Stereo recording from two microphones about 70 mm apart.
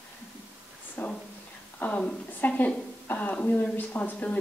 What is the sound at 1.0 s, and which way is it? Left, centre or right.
A woman's voice, left.